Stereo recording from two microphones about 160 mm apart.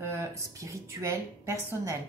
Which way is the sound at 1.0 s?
20° right (ahead or behind).